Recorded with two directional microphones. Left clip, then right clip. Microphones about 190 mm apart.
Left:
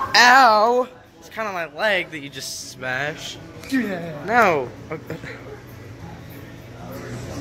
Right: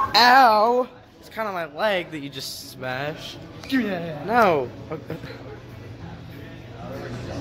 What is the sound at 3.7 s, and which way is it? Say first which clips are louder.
Speech: even; 5° left (ahead or behind).